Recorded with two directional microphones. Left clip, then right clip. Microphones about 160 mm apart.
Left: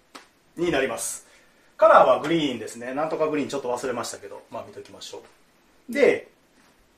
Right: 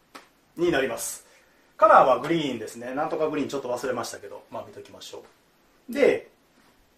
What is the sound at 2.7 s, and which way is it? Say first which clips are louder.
Speech: left 1 dB; 20° left (ahead or behind).